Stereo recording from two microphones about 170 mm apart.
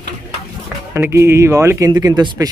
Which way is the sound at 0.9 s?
15° right (ahead or behind).